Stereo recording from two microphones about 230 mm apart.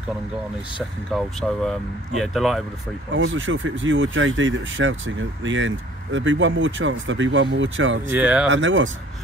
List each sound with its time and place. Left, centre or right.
1.1 s speech: centre
3.1 s speech: right
8.1 s speech: centre
8.5 s speech: right